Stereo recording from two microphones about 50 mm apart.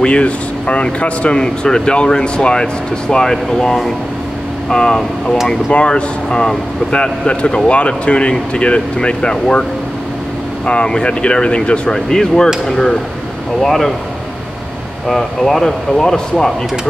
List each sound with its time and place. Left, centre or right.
0.0 s speech: left
5.7 s speech: left
10.7 s speech: centre
11.9 s speech: centre
15.0 s speech: centre